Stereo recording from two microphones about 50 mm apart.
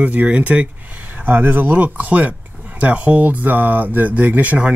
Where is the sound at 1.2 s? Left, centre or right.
Right.